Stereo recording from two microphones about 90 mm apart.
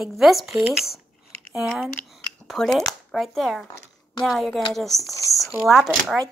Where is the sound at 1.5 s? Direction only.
5° right (ahead or behind).